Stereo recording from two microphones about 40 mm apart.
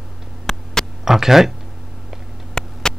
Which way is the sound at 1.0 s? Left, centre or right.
Centre.